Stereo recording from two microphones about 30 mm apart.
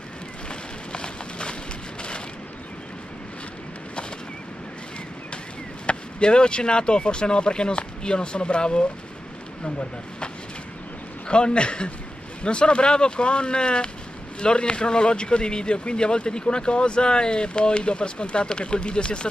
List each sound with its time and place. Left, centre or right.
0.5 s a sound: left
5.9 s speech: left
11.2 s speech: left